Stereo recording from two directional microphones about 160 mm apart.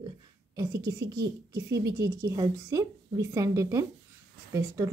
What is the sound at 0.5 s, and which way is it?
Speech, 20° right (ahead or behind).